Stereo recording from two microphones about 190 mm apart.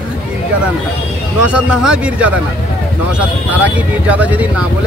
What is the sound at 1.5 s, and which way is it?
Speech, 5° right (ahead or behind).